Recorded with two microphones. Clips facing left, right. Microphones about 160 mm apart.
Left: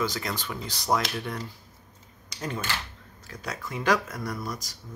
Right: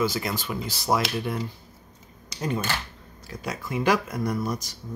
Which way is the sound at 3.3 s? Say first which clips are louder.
Right 4 dB; 10° right (ahead or behind).